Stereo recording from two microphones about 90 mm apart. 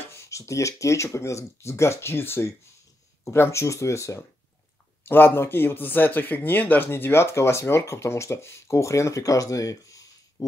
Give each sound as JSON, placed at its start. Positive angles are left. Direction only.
{"t": 0.1, "sound": "speech", "side_deg": 35}